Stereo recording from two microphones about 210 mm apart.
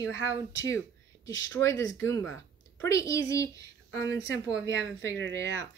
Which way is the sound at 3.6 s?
55° right (ahead or behind).